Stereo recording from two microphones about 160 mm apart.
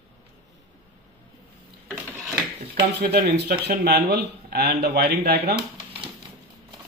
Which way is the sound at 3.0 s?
80° right.